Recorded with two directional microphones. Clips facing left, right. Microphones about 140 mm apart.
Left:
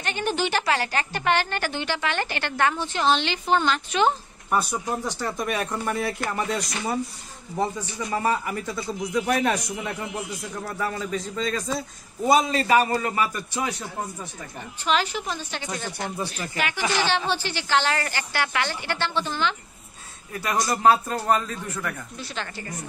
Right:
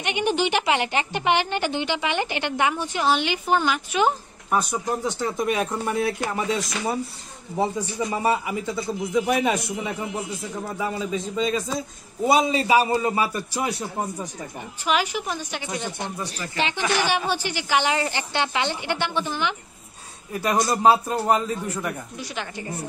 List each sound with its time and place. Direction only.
0.0 s a woman's voice: 15° right (ahead or behind)
8.1 s a woman's voice: 10° right (ahead or behind)
13.2 s a man's voice: 30° right (ahead or behind)
14.9 s a woman's voice: 10° right (ahead or behind)
16.5 s speech: 25° right (ahead or behind)
17.0 s a woman's voice: 10° right (ahead or behind)